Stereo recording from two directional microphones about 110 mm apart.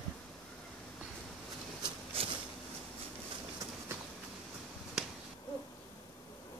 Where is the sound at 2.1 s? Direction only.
60° right (ahead or behind).